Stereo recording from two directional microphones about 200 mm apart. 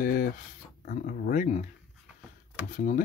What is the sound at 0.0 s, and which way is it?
Speech, 45° left (ahead or behind).